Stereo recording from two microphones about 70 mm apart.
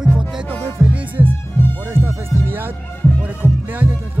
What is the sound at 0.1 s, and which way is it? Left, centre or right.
Music, left.